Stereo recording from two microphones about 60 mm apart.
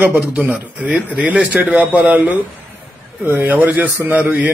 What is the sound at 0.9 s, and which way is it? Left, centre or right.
A man's voice, centre.